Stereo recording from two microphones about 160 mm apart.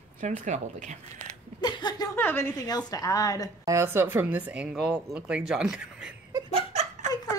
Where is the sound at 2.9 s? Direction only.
20° left (ahead or behind).